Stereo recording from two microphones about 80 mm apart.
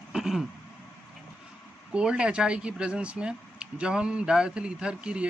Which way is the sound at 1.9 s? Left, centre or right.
Centre.